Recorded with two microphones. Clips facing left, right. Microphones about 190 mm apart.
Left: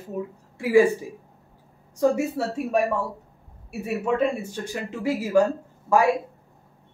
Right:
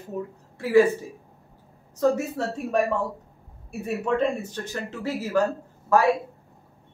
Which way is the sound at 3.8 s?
10° left (ahead or behind).